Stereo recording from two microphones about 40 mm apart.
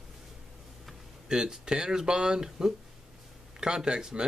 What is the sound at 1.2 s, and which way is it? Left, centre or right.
Speech, centre.